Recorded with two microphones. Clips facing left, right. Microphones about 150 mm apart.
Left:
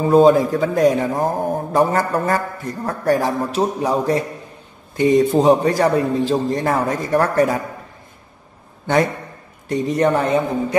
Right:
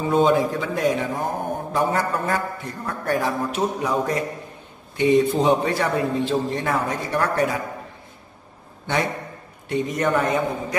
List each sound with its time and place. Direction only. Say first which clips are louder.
0.0 s a man's voice: left 6 dB; 40° left (ahead or behind)
9.7 s a man's voice: left 5 dB; 35° left (ahead or behind)